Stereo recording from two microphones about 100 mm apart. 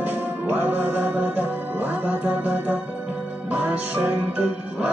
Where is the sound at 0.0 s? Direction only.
20° right (ahead or behind).